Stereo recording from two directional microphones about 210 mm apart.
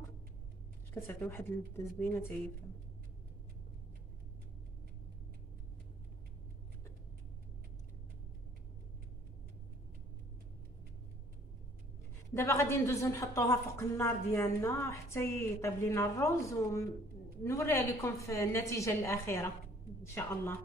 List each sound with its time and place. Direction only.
0.9 s a woman's voice: 10° left (ahead or behind)
12.4 s a woman's voice: 15° left (ahead or behind)